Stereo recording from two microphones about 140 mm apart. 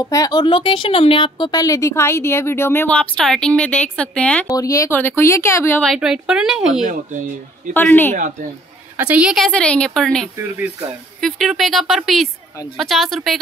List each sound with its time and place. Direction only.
0.0 s speech: 25° left (ahead or behind); by 4.5 s 10° left (ahead or behind)
4.5 s speech: 25° left (ahead or behind)
5.9 s speech: 5° right (ahead or behind)
6.9 s a man's voice: 65° right (ahead or behind)
7.7 s a woman's voice: 15° left (ahead or behind)
8.9 s a woman's voice: 10° right (ahead or behind)
9.5 s a woman's voice: 10° left (ahead or behind)